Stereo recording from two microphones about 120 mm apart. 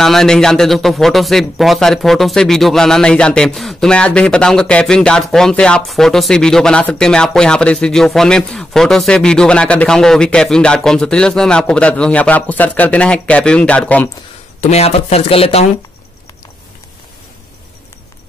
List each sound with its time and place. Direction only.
0.0 s speech: 5° left (ahead or behind)
14.6 s speech: 60° left (ahead or behind)